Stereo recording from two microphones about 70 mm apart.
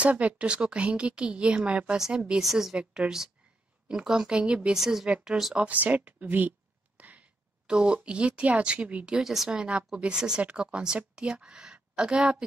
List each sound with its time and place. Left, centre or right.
0.0 s a woman's voice: right